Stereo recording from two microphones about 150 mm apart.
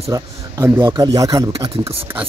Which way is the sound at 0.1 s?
25° right (ahead or behind).